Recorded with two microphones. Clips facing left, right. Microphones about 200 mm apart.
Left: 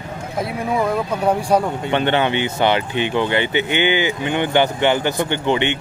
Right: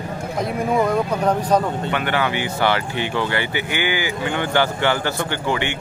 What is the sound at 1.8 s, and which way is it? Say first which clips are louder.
Speech: left 4 dB; 25° left (ahead or behind).